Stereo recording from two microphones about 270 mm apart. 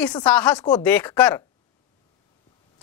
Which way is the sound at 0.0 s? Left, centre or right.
Centre.